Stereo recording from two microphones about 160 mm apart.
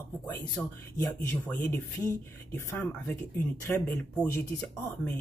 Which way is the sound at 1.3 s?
10° left (ahead or behind).